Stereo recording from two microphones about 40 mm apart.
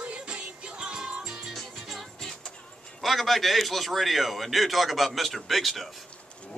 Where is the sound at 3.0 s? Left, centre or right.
Centre.